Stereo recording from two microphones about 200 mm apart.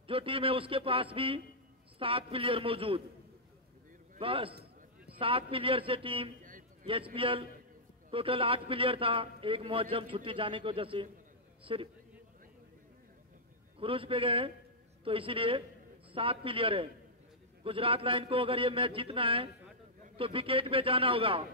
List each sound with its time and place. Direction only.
0.0 s a man's voice: 25° right (ahead or behind)
4.2 s a man's voice: 25° right (ahead or behind)
6.4 s a sound: 40° right (ahead or behind)
6.9 s a man's voice: 25° right (ahead or behind)
13.7 s a man's voice: 25° right (ahead or behind)